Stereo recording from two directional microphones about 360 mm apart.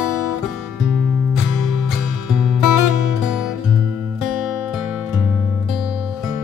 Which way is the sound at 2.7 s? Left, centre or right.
Left.